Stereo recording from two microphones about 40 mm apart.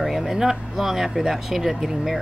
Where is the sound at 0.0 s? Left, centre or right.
Centre.